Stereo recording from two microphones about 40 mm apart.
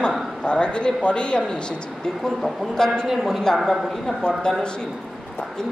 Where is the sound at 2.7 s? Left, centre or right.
Centre.